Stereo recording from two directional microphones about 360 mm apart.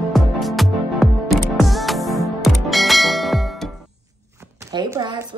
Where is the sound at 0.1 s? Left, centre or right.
Centre.